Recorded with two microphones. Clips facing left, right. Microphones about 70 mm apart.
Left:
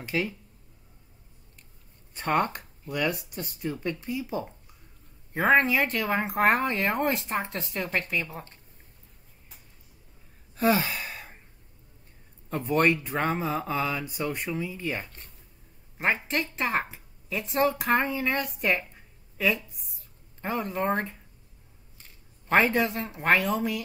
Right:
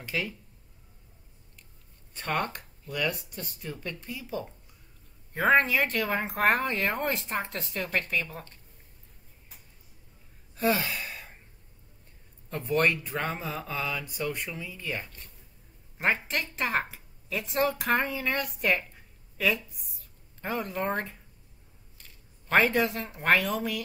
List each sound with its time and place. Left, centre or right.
0.0 s speech: centre
2.1 s speech: centre
5.3 s speech: centre
10.6 s speech: left
10.9 s sigh: centre
12.4 s speech: centre
16.0 s speech: centre
22.5 s speech: centre